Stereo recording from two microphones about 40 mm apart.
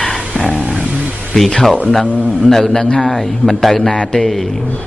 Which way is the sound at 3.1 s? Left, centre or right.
Centre.